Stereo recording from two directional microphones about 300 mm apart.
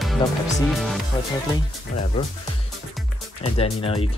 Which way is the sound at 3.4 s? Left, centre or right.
Centre.